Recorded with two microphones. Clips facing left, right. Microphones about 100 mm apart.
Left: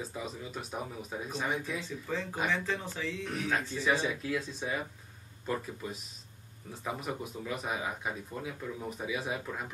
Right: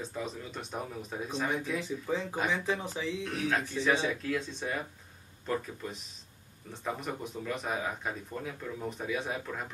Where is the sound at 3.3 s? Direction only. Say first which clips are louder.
Even; centre (ahead or behind).